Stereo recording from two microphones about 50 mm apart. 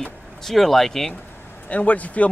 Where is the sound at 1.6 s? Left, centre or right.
Left.